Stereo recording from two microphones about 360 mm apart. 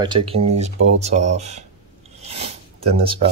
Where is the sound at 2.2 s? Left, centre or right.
Centre.